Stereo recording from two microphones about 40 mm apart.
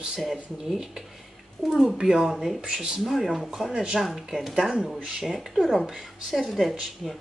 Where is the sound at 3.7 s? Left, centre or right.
Centre.